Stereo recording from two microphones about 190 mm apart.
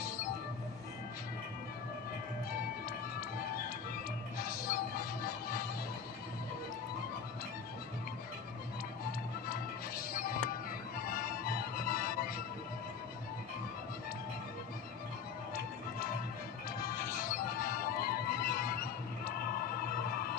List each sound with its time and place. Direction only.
4.4 s music: 50° left (ahead or behind)
9.5 s music: 50° left (ahead or behind)
16.9 s music: 50° left (ahead or behind)